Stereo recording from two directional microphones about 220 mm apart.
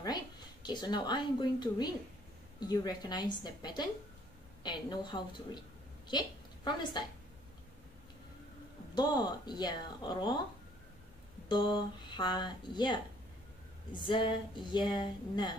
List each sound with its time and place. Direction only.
0.0 s a woman's voice: 20° left (ahead or behind)
8.9 s speech: 20° left (ahead or behind)
11.4 s speech: 20° left (ahead or behind)